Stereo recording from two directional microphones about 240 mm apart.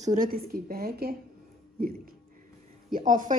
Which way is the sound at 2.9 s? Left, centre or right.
Right.